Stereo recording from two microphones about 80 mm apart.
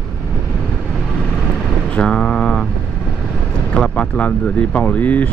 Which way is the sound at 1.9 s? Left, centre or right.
Centre.